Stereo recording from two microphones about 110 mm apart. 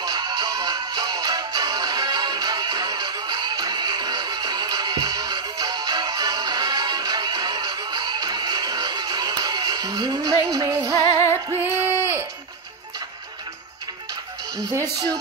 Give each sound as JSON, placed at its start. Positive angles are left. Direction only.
{"t": 0.0, "sound": "music", "side_deg": -35}
{"t": 11.5, "sound": "a sound", "side_deg": -20}
{"t": 14.6, "sound": "speech", "side_deg": -30}